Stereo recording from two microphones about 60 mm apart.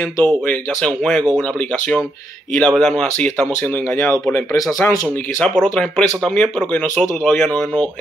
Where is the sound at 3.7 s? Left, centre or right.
Left.